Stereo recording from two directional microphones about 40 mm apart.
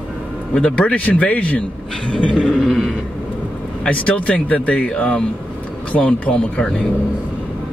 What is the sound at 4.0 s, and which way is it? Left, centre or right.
Speech, left.